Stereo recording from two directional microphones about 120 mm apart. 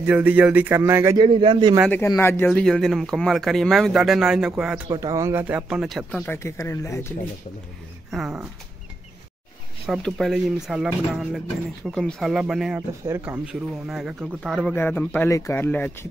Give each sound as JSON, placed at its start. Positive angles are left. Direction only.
{"t": 0.0, "sound": "speech", "side_deg": -15}
{"t": 1.1, "sound": "a man's voice", "side_deg": -45}
{"t": 2.1, "sound": "speech", "side_deg": 20}
{"t": 2.5, "sound": "speech", "side_deg": 0}
{"t": 4.8, "sound": "speech", "side_deg": -30}
{"t": 5.4, "sound": "speech", "side_deg": -15}
{"t": 5.8, "sound": "speech", "side_deg": 0}
{"t": 6.2, "sound": "speech", "side_deg": 20}
{"t": 8.1, "sound": "speech", "side_deg": -5}
{"t": 9.8, "sound": "speech", "side_deg": 0}
{"t": 14.8, "sound": "a man's voice", "side_deg": 15}